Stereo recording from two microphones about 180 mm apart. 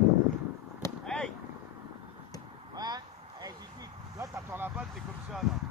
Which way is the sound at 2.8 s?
20° right (ahead or behind).